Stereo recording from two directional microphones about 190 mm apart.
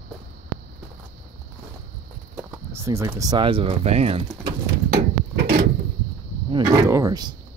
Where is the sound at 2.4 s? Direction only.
15° right (ahead or behind); by 4.2 s 30° right (ahead or behind).